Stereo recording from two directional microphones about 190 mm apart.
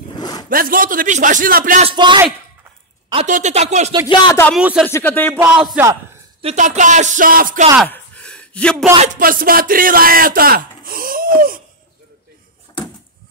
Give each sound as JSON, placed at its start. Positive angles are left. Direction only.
{"t": 0.1, "sound": "a sound", "side_deg": 20}
{"t": 0.5, "sound": "speech", "side_deg": -50}
{"t": 1.9, "sound": "speech", "side_deg": -25}
{"t": 3.3, "sound": "speech", "side_deg": -40}
{"t": 4.1, "sound": "speech", "side_deg": 25}
{"t": 4.6, "sound": "speech", "side_deg": -5}
{"t": 4.8, "sound": "speech", "side_deg": 10}
{"t": 5.3, "sound": "music", "side_deg": -10}
{"t": 6.4, "sound": "speech", "side_deg": -40}
{"t": 7.8, "sound": "a sound", "side_deg": 5}
{"t": 8.9, "sound": "speech", "side_deg": -35}
{"t": 9.2, "sound": "speech", "side_deg": -50}